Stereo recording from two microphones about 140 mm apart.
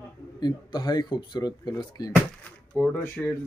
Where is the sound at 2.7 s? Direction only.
5° left (ahead or behind).